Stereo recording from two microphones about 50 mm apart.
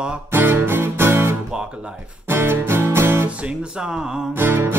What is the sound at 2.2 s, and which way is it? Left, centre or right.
Speech, right.